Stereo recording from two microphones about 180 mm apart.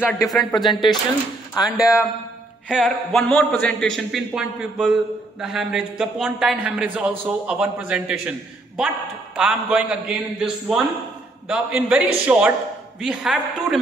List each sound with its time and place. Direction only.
0.1 s a man's voice: centre (ahead or behind)
0.7 s speech: 25° left (ahead or behind)
2.7 s a man's voice: centre (ahead or behind)